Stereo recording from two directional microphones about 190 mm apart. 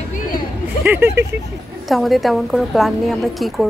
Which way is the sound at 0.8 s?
10° right (ahead or behind).